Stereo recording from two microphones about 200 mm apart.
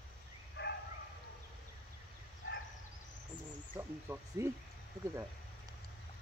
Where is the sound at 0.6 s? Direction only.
60° left (ahead or behind).